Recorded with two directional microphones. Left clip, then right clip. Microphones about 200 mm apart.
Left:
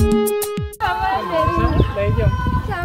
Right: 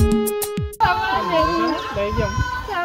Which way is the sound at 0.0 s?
Centre (ahead or behind).